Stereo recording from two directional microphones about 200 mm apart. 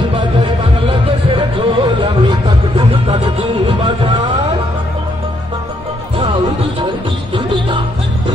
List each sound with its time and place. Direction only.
0.4 s music: 25° right (ahead or behind)
6.1 s music: 25° right (ahead or behind)